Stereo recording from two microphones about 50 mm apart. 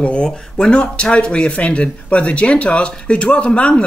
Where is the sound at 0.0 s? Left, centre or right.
Centre.